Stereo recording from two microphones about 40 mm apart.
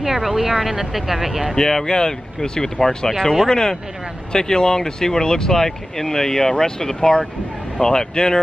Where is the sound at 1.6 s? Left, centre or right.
Centre.